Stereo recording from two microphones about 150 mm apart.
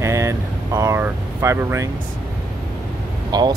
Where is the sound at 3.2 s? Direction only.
25° right (ahead or behind).